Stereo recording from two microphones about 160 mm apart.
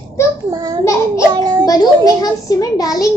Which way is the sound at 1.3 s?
25° right (ahead or behind).